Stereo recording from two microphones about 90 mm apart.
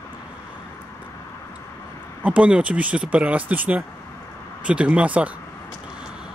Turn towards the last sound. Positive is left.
turn(degrees=-15)  # may be behind; listen again after turning